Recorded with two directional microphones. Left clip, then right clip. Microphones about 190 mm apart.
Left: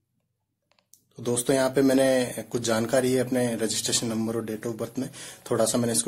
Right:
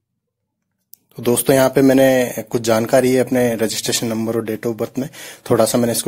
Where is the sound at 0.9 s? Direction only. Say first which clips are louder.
Right 10 dB; 40° right (ahead or behind).